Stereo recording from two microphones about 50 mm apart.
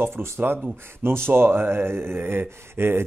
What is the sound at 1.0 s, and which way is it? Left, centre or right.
Speech, right.